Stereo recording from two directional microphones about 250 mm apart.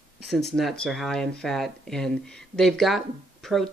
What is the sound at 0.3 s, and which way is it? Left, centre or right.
Speech, centre.